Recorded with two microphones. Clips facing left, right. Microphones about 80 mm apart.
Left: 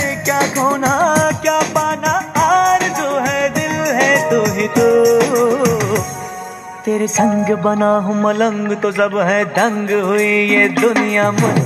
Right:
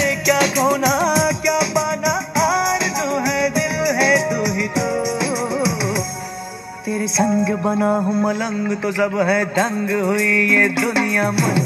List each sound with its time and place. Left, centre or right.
0.3 s music: left